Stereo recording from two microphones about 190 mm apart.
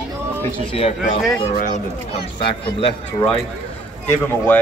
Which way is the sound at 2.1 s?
30° left (ahead or behind).